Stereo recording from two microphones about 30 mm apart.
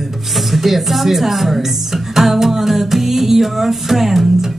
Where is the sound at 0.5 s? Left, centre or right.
Centre.